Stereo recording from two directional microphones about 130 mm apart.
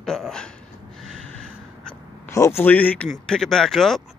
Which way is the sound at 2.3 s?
20° left (ahead or behind).